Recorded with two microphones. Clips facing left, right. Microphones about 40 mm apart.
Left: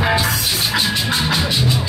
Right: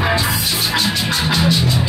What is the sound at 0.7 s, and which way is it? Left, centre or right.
Music, centre.